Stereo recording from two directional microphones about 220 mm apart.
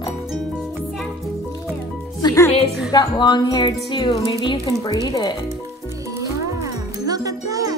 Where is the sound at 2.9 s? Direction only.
20° left (ahead or behind).